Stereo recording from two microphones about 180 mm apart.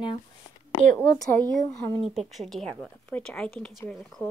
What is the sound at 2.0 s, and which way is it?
Speech, centre (ahead or behind).